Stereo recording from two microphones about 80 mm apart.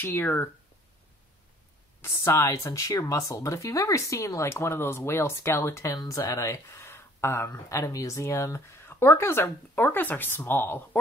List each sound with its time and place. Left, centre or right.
0.0 s speech: left
2.0 s speech: left